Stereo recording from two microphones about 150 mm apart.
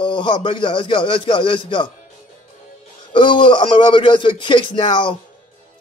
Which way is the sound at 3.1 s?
35° left (ahead or behind).